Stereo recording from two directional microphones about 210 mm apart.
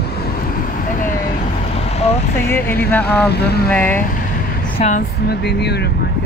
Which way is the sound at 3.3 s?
50° left (ahead or behind).